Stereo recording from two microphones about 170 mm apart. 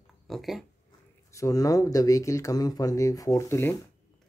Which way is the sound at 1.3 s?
20° left (ahead or behind).